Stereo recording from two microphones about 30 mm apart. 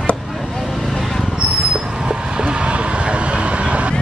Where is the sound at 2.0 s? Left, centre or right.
Right.